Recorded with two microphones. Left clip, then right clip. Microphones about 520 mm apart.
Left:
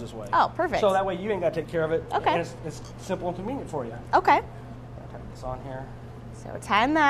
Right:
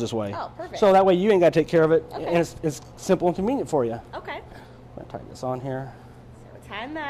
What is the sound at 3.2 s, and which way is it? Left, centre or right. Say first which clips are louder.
Speech: right 8 dB; right.